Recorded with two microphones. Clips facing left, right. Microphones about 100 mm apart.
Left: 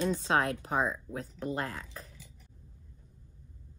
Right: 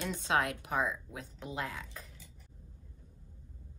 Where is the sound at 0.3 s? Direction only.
35° left (ahead or behind).